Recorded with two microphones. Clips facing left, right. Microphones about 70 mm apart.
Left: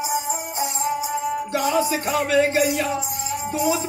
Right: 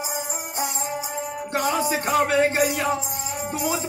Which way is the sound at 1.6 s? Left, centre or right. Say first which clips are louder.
Left 1 dB; right.